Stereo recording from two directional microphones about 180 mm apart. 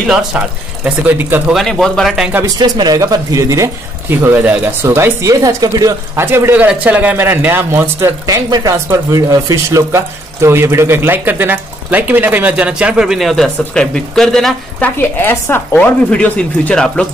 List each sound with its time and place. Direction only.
0.0 s speech: 5° right (ahead or behind)
1.6 s speech: centre (ahead or behind)
2.4 s speech: 20° right (ahead or behind); by 17.0 s 5° left (ahead or behind)